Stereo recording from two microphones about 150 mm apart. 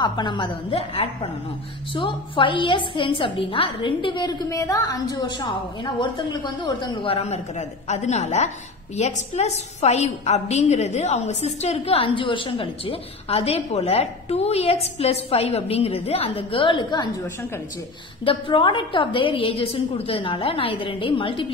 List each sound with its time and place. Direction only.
0.0 s a woman's voice: 30° left (ahead or behind)
18.2 s a woman's voice: 35° left (ahead or behind)